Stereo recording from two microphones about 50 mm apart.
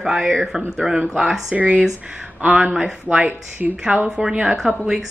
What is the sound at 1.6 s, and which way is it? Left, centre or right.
Speech, right.